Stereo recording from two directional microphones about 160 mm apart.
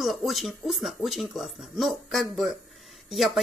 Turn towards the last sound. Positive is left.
turn(degrees=0)  # may be behind; listen again after turning